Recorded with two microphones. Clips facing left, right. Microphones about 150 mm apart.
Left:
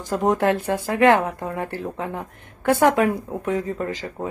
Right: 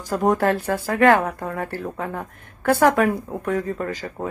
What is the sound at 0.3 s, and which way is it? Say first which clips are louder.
Speech: even; 20° left (ahead or behind).